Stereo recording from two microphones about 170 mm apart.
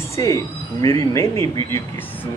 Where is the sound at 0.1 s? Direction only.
20° left (ahead or behind).